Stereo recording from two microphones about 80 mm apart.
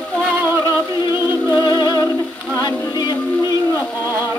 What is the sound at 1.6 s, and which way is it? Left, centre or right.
Music, left.